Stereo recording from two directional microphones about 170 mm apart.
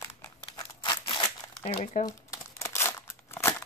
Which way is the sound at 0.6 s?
25° left (ahead or behind).